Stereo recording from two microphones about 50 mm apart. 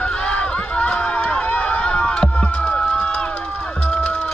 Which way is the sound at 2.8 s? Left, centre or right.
Centre.